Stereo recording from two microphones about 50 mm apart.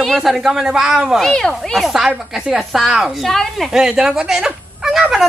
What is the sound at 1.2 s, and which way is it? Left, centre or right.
Speech, centre.